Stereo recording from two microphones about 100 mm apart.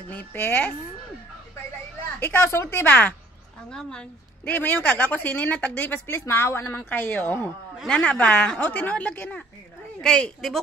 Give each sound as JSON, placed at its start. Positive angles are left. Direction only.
{"t": 0.1, "sound": "a woman's voice", "side_deg": 15}
{"t": 2.1, "sound": "speech", "side_deg": 25}
{"t": 4.5, "sound": "a woman's voice", "side_deg": 15}